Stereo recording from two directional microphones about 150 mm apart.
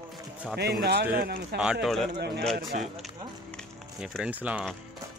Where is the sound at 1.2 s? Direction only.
90° right.